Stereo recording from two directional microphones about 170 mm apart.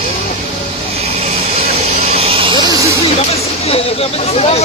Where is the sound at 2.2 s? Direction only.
30° right (ahead or behind).